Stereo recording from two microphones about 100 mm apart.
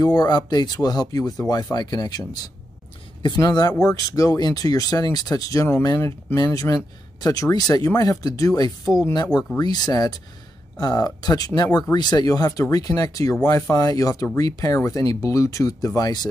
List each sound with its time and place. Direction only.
0.0 s speech: 45° left (ahead or behind)